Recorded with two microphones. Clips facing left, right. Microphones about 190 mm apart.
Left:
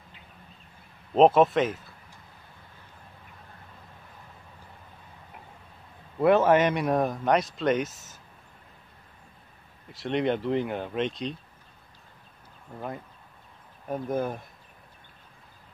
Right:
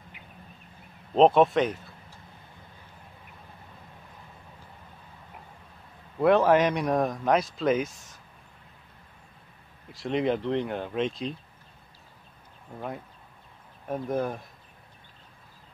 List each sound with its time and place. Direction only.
1.1 s speech: 5° left (ahead or behind)
6.1 s speech: 5° left (ahead or behind)
9.8 s speech: centre (ahead or behind)
13.8 s speech: centre (ahead or behind)